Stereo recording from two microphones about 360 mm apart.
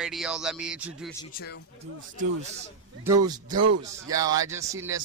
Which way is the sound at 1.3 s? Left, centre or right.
Left.